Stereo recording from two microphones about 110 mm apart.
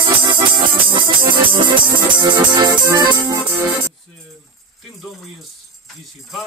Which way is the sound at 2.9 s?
30° right (ahead or behind).